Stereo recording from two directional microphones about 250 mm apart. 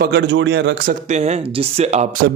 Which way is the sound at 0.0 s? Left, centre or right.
Right.